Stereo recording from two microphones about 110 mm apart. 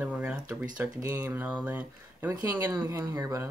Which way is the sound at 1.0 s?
25° right (ahead or behind).